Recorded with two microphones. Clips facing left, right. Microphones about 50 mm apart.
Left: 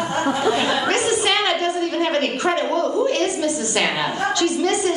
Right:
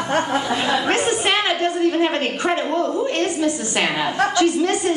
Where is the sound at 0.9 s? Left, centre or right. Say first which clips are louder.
Even; right.